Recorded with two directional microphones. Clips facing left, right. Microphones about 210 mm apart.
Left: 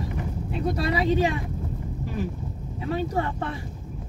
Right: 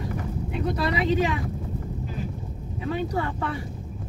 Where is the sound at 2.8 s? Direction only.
35° left (ahead or behind).